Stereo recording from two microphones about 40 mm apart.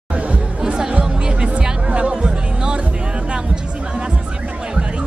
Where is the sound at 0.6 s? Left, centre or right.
Centre.